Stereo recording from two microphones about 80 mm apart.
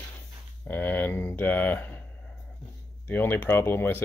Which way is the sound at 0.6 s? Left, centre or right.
Left.